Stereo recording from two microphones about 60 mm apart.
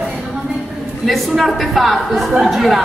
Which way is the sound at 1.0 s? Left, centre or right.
Centre.